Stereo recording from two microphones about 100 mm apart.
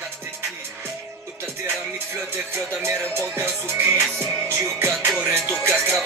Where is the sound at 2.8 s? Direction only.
25° right (ahead or behind).